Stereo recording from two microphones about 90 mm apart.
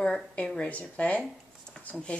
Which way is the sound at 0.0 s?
10° left (ahead or behind).